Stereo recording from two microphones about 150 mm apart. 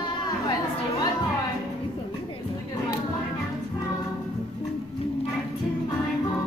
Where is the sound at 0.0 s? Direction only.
30° left (ahead or behind).